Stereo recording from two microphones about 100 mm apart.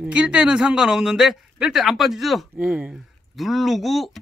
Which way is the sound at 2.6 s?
15° right (ahead or behind).